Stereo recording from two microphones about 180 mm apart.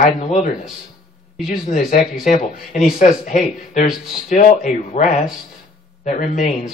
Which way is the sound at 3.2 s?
45° left (ahead or behind).